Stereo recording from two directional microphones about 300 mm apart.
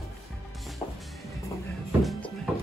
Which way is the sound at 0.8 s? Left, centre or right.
Centre.